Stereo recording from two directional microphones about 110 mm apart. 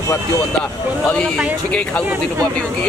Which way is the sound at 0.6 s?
10° left (ahead or behind).